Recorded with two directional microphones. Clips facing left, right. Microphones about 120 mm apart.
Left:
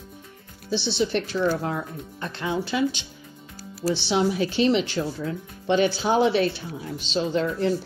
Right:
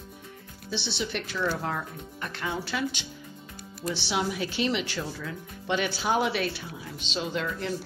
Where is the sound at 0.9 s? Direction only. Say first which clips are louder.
Left 9 dB; 35° left (ahead or behind).